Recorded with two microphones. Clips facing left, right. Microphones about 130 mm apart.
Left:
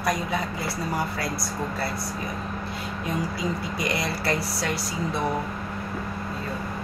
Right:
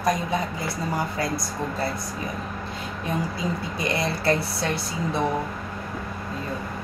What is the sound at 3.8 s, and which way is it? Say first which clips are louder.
Speech: right 3 dB; 25° right (ahead or behind).